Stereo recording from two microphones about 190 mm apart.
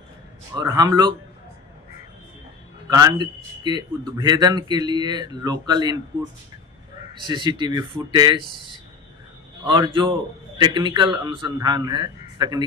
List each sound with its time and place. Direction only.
0.6 s a man's voice: 20° right (ahead or behind)
2.9 s a man's voice: 20° right (ahead or behind)
7.2 s a man's voice: 25° right (ahead or behind)
9.8 s a man's voice: 25° right (ahead or behind)